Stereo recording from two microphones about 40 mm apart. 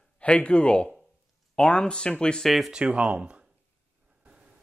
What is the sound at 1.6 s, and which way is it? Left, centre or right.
Speech, left.